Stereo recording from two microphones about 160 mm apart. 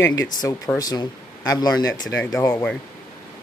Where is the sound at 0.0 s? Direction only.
20° left (ahead or behind).